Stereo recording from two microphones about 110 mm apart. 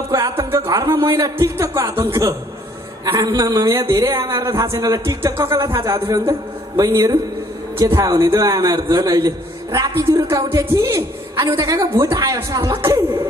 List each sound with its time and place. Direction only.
0.1 s music: 35° right (ahead or behind)
0.7 s a man's voice: 30° right (ahead or behind)